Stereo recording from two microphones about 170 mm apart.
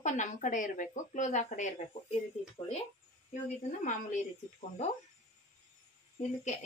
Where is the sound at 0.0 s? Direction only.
45° left (ahead or behind).